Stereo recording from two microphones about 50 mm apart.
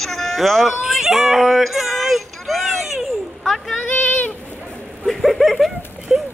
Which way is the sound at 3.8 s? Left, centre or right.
Left.